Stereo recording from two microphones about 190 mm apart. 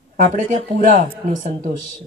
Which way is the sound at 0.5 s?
45° right (ahead or behind).